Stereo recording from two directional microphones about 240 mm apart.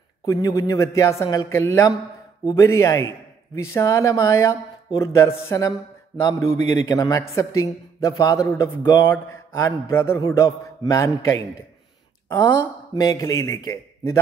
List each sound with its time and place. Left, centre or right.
0.2 s a man's voice: centre